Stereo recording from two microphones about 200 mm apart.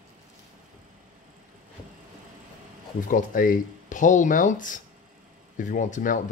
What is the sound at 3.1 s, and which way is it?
Speech, 45° left (ahead or behind).